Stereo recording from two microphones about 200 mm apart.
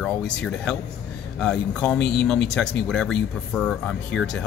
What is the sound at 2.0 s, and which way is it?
Speech, 55° left (ahead or behind).